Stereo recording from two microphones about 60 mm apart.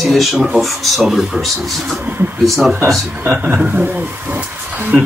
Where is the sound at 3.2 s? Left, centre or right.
Right.